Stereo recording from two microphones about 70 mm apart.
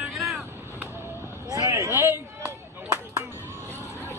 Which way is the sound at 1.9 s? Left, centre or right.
Right.